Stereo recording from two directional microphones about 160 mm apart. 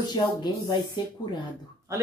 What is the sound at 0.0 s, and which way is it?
A woman's voice, 25° left (ahead or behind).